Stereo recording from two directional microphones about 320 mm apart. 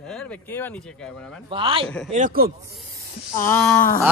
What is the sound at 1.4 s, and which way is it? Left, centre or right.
Speech, centre.